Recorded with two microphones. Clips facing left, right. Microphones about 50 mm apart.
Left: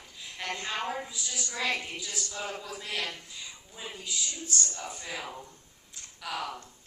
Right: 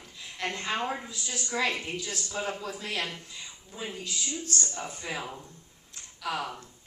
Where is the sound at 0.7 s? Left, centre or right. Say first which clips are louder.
Right 2 dB; right.